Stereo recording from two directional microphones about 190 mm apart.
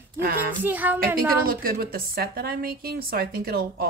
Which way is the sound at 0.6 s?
10° right (ahead or behind).